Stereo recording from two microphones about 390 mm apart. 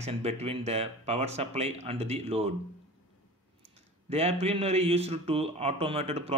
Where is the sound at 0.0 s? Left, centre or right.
Centre.